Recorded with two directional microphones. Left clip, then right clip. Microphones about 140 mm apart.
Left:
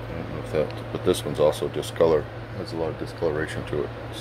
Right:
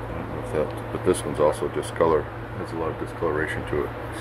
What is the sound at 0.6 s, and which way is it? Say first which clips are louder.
Speech: left 1 dB; 25° left (ahead or behind).